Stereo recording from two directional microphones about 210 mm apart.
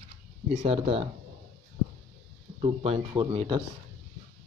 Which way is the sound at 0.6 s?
25° right (ahead or behind).